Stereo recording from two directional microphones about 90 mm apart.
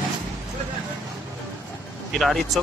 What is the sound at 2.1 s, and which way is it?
Speech, centre (ahead or behind).